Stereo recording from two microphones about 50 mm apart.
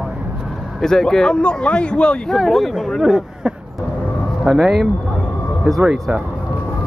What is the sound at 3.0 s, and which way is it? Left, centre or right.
Speech, centre.